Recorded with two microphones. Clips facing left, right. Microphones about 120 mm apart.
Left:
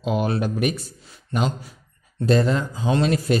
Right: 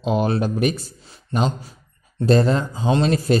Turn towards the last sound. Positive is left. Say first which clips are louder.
# right 2 dB
turn(degrees=-30)  # may be behind; listen again after turning